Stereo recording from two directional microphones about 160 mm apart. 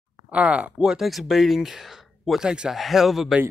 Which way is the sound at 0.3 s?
5° right (ahead or behind).